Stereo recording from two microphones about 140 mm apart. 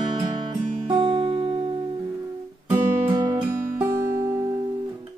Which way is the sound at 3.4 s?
20° right (ahead or behind).